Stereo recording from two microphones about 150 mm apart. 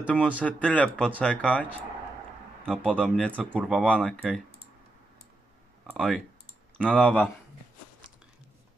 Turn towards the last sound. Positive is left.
turn(degrees=10)  # may be behind; listen again after turning